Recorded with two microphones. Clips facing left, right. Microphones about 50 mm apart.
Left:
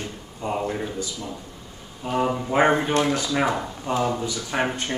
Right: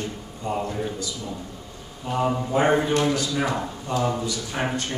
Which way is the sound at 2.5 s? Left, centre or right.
Left.